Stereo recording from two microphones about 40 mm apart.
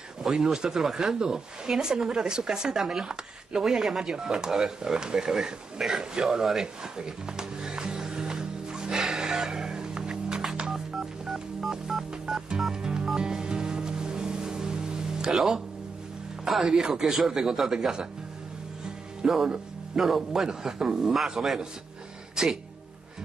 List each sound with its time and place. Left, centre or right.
0.2 s speech: centre
6.6 s music: centre
8.9 s music: centre
11.2 s telephone dialing: centre
12.5 s music: centre
16.4 s speech: centre
19.2 s a man's voice: centre
20.4 s speech: centre